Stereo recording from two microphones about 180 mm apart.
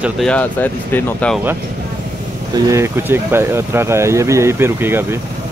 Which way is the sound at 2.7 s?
15° right (ahead or behind).